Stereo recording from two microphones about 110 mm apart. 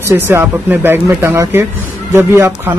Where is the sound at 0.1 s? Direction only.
25° right (ahead or behind).